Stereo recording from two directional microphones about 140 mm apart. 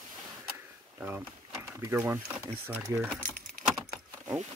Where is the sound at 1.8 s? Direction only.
20° right (ahead or behind).